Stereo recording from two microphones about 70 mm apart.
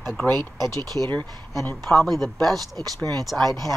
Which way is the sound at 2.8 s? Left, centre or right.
Right.